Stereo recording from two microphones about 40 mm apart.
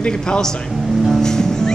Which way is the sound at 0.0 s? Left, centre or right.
Left.